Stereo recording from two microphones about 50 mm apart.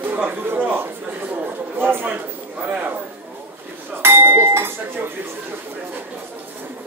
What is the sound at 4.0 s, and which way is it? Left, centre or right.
Chink, right.